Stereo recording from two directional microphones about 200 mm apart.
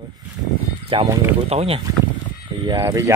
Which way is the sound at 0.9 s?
25° right (ahead or behind).